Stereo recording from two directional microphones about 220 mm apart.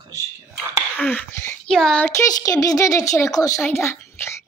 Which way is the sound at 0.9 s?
5° left (ahead or behind).